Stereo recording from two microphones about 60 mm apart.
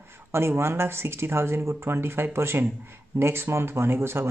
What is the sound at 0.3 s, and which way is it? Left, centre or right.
Speech, right.